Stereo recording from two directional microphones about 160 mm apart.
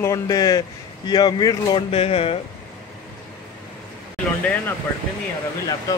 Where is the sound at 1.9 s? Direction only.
35° left (ahead or behind).